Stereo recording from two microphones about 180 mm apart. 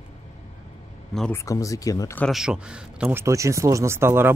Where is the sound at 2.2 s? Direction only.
5° right (ahead or behind).